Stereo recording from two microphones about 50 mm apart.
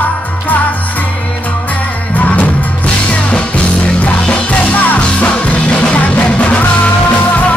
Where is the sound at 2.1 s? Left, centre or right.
Left.